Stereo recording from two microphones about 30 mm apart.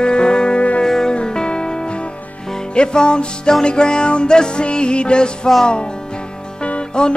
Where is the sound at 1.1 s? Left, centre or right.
Left.